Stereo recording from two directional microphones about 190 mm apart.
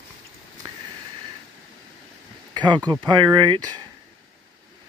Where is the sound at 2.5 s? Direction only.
25° right (ahead or behind).